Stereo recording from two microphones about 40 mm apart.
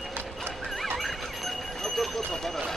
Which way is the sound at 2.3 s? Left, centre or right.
Centre.